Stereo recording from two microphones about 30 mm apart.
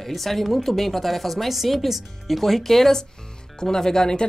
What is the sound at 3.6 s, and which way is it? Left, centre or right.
Speech, centre.